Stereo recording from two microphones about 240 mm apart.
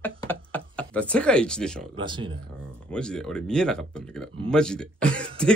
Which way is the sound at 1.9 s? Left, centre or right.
Centre.